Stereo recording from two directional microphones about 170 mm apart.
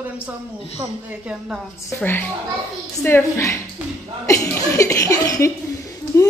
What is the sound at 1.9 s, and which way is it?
A woman's voice, 10° left (ahead or behind).